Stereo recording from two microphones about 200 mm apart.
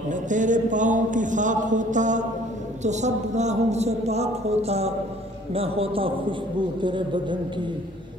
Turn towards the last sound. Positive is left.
turn(degrees=-25)  # may be behind; listen again after turning